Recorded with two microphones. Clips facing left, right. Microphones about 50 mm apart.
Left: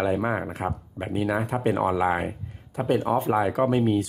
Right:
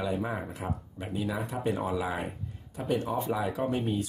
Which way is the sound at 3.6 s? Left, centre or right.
Left.